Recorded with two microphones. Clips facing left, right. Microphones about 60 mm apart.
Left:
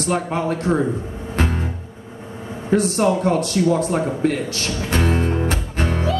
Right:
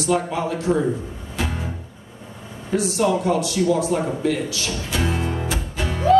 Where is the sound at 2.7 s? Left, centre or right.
Left.